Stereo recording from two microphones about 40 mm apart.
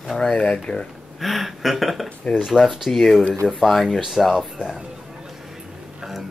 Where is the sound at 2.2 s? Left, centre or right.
Left.